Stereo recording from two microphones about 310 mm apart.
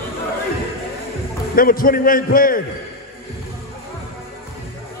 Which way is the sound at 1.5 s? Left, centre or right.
Left.